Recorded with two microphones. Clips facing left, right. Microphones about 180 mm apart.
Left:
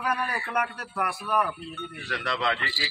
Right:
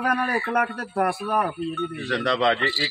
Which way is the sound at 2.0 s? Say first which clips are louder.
Right 7 dB; 35° right (ahead or behind).